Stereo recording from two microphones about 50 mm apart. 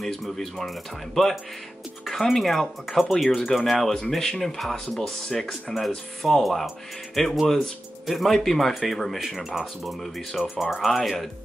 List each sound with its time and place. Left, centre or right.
0.0 s speech: centre